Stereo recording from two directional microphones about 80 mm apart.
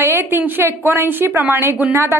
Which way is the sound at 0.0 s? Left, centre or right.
Right.